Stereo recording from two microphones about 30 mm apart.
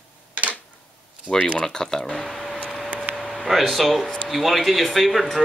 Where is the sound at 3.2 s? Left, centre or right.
Centre.